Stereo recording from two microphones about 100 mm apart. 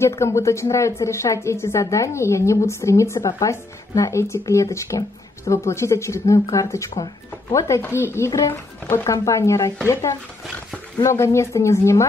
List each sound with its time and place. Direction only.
0.2 s a woman's voice: 30° left (ahead or behind)
11.0 s a woman's voice: 30° left (ahead or behind)